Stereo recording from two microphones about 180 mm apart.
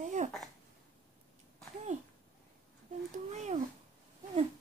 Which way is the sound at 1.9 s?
40° right (ahead or behind).